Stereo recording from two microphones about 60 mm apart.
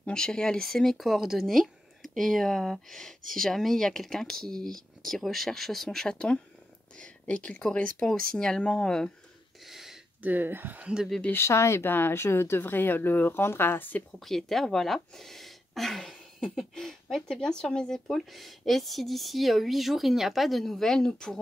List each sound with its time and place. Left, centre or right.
0.0 s speech: centre
2.1 s speech: centre
9.7 s a sound: centre
10.2 s speech: right
10.8 s speech: centre
11.3 s speech: left
14.2 s speech: centre